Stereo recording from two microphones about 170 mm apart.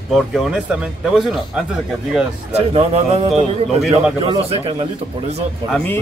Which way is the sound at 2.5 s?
35° right (ahead or behind).